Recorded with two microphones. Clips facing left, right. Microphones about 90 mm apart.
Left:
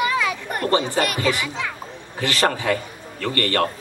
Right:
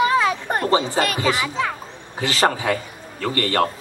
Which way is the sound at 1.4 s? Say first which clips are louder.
Right 4 dB; 40° right (ahead or behind).